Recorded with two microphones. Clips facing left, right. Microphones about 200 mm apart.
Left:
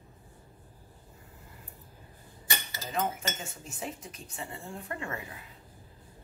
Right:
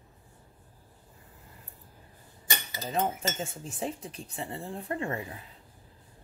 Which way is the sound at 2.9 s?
30° right (ahead or behind).